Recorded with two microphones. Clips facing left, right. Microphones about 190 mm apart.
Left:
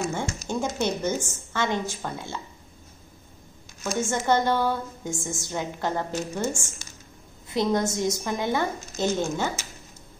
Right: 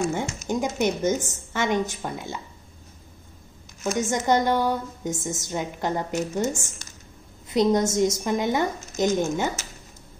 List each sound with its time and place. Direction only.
0.5 s a woman's voice: 15° right (ahead or behind)
3.8 s a woman's voice: 20° right (ahead or behind)